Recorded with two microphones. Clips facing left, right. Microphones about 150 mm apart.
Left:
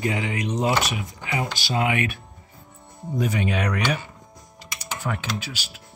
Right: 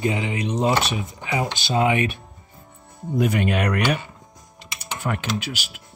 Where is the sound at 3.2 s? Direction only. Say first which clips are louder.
Right 3 dB; 60° right (ahead or behind).